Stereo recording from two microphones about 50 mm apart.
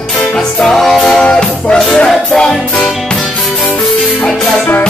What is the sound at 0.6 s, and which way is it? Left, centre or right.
Music, centre.